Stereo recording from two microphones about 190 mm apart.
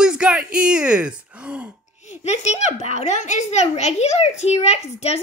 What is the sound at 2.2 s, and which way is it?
A child's voice, 35° left (ahead or behind).